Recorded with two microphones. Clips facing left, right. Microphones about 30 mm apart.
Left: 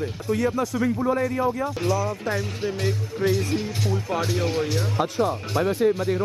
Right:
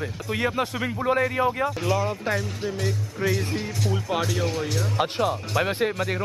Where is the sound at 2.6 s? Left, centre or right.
Centre.